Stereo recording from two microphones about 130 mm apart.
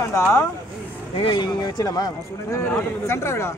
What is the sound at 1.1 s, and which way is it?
Speech, 40° left (ahead or behind).